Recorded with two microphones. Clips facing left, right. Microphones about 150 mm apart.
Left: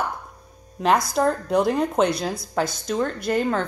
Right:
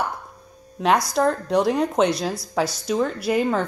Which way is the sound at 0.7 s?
Centre (ahead or behind).